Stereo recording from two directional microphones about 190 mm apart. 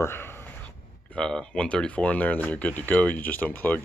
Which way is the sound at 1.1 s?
5° left (ahead or behind).